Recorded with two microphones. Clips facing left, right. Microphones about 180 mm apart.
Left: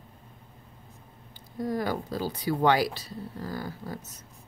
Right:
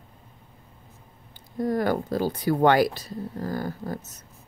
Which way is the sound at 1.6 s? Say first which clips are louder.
Right 5 dB; 55° right (ahead or behind).